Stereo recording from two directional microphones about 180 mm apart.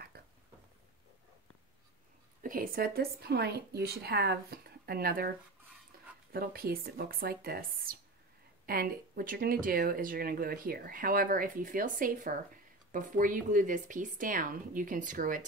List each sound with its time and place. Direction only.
0.1 s a sound: 55° right (ahead or behind)
2.4 s speech: 50° right (ahead or behind)
6.3 s speech: 55° right (ahead or behind)